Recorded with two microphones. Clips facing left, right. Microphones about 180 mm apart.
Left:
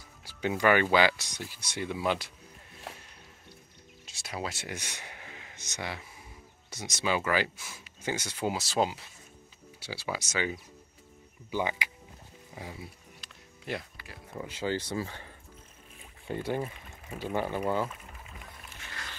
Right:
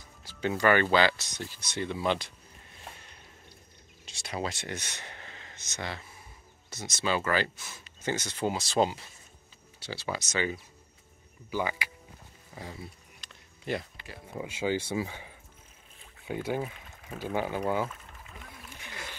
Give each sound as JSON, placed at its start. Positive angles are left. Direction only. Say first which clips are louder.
{"t": 0.2, "sound": "speech", "louder": "even", "side_deg": 10}
{"t": 4.0, "sound": "speech", "louder": "right 2 dB", "side_deg": 5}
{"t": 12.5, "sound": "a sound", "louder": "right 1 dB", "side_deg": 10}
{"t": 14.3, "sound": "speech", "louder": "right 2 dB", "side_deg": -15}
{"t": 18.8, "sound": "wild animals", "louder": "right 2 dB", "side_deg": -15}